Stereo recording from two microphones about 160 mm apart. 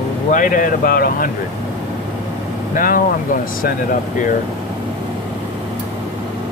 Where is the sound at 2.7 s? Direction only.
60° left (ahead or behind).